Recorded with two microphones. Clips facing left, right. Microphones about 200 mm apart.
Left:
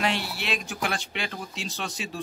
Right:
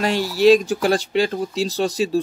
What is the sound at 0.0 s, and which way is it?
Speech, 40° right (ahead or behind).